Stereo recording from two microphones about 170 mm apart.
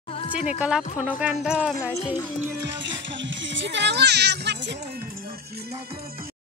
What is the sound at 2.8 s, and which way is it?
Speech, 90° right.